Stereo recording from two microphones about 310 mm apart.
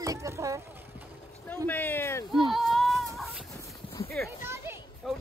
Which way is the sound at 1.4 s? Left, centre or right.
Centre.